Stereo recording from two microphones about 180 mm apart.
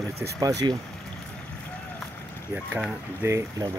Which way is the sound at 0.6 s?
25° right (ahead or behind).